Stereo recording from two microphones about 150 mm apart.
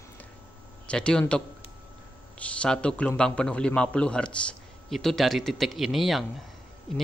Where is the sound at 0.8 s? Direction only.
5° left (ahead or behind).